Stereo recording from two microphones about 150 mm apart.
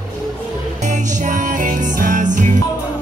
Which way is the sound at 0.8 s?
55° right (ahead or behind).